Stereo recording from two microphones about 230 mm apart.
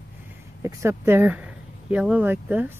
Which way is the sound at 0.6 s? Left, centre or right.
Centre.